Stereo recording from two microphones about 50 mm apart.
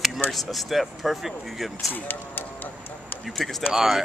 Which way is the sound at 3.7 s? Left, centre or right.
Centre.